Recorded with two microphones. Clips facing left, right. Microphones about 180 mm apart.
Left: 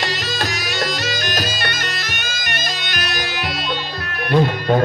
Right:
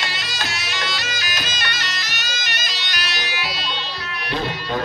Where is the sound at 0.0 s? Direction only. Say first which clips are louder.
Left 6 dB; 40° left (ahead or behind).